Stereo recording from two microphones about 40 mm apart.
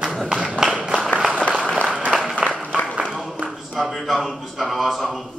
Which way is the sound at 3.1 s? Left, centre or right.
Centre.